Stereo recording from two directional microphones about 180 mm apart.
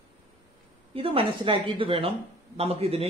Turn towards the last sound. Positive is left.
turn(degrees=-35)  # may be behind; listen again after turning